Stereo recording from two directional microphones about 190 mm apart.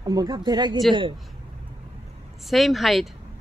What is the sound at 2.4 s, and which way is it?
Speech, centre (ahead or behind).